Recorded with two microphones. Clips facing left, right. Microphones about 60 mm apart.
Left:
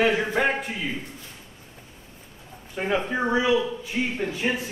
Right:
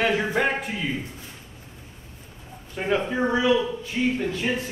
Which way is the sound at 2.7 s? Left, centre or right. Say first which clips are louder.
Right 1 dB; centre.